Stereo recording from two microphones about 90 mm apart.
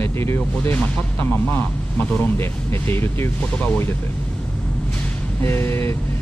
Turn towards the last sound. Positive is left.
turn(degrees=30)  # may be behind; listen again after turning